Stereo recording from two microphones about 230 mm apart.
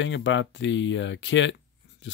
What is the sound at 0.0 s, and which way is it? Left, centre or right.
Speech, left.